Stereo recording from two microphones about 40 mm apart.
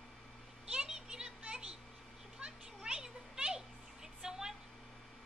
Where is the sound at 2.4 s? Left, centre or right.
Right.